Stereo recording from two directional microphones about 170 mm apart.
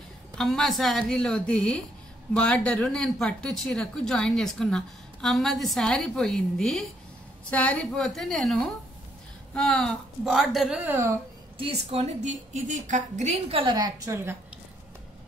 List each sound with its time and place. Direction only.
0.4 s speech: centre (ahead or behind); by 11.1 s 15° right (ahead or behind)
11.5 s a woman's voice: 35° right (ahead or behind); by 14.3 s 15° right (ahead or behind)